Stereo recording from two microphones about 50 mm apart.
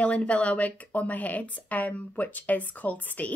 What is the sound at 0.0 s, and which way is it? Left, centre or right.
A woman's voice, left.